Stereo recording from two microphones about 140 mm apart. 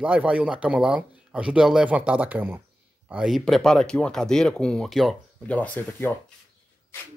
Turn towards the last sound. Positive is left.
turn(degrees=10)  # may be behind; listen again after turning